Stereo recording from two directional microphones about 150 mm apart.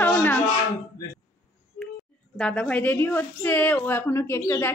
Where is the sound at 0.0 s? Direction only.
15° left (ahead or behind).